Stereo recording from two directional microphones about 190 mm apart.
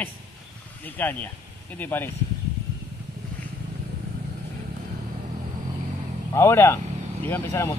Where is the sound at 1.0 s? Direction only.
10° left (ahead or behind).